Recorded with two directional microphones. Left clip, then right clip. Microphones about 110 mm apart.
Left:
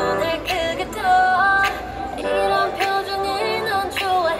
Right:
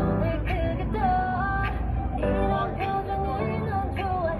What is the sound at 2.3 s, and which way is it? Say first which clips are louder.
Music: left 8 dB; 25° left (ahead or behind).